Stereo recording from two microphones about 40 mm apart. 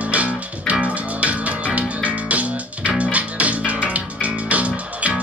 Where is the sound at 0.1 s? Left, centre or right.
Right.